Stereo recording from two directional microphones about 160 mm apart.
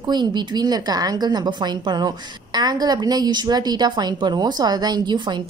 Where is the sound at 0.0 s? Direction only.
25° right (ahead or behind).